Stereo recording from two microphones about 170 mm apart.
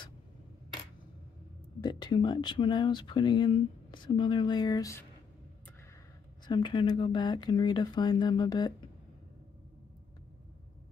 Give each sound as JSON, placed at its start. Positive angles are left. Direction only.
{"t": 1.8, "sound": "speech", "side_deg": 25}
{"t": 6.4, "sound": "speech", "side_deg": 25}